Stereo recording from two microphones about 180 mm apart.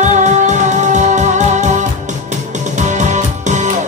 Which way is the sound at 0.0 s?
40° right (ahead or behind).